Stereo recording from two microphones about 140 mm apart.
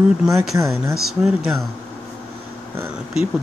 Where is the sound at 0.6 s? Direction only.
20° right (ahead or behind).